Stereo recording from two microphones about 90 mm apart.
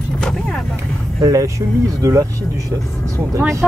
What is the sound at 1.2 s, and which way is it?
Speech, 35° right (ahead or behind).